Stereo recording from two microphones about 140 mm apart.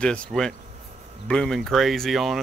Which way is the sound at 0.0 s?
5° left (ahead or behind).